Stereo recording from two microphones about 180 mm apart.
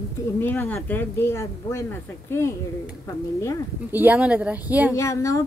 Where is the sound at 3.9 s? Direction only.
10° right (ahead or behind).